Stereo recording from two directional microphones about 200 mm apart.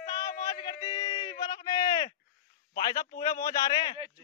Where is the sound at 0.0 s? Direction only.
15° left (ahead or behind).